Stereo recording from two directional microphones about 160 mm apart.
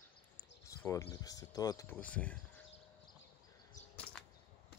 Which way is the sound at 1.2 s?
25° left (ahead or behind).